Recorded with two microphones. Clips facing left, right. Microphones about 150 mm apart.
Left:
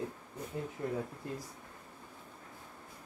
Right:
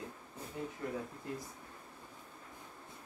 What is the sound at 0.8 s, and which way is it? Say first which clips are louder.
Speech: left 5 dB; 25° left (ahead or behind).